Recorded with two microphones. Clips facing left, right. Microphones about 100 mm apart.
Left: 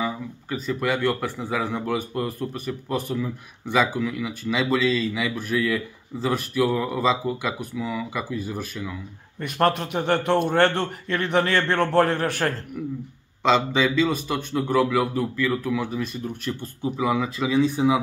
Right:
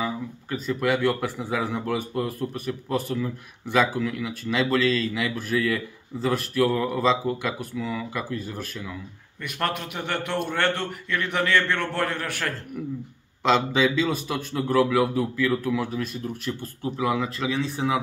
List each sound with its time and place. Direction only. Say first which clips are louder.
0.0 s speech: left 1 dB; centre (ahead or behind)
9.4 s a man's voice: left 7 dB; 35° left (ahead or behind)
13.4 s speech: left 1 dB; centre (ahead or behind)